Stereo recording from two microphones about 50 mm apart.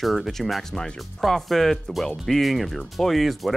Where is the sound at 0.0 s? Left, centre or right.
Centre.